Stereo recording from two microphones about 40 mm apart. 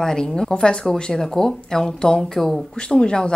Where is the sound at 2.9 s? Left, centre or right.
Left.